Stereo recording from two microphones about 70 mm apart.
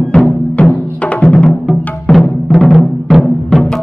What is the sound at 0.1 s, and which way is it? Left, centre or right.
Music, centre.